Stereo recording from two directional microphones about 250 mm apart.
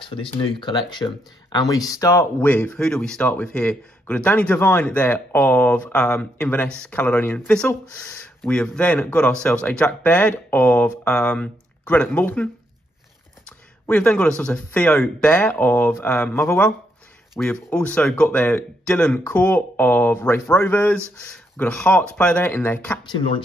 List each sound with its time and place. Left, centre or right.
0.1 s speech: left
13.5 s speech: centre
23.1 s speech: left